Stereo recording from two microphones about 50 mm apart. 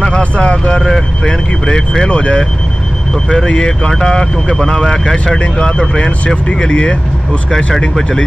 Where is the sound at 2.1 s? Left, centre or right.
Left.